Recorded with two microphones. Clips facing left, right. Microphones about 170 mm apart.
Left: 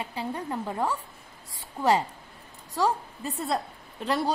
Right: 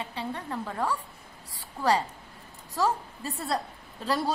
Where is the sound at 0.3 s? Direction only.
15° left (ahead or behind).